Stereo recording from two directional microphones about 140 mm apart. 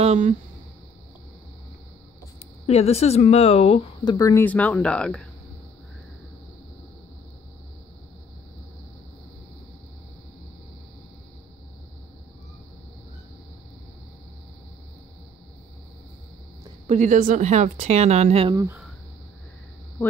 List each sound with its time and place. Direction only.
0.0 s speech: 50° right (ahead or behind)
2.6 s speech: 50° left (ahead or behind)
4.0 s speech: 30° left (ahead or behind)
4.5 s speech: 10° left (ahead or behind)
16.8 s speech: 60° right (ahead or behind); by 18.6 s 45° right (ahead or behind)
20.0 s a sound: 15° left (ahead or behind)